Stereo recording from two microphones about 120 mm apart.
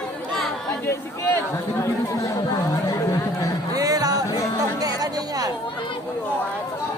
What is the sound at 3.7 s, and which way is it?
Music, 30° right (ahead or behind).